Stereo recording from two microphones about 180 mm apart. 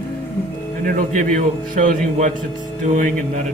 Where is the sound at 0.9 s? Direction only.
50° right (ahead or behind).